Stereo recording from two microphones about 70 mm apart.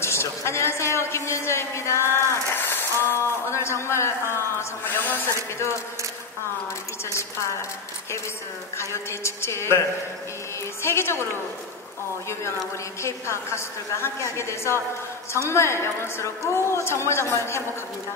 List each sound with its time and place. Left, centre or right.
0.0 s a man's voice: left
4.8 s speech: left
8.7 s a woman's voice: left
10.8 s a woman's voice: left
13.0 s a woman's voice: left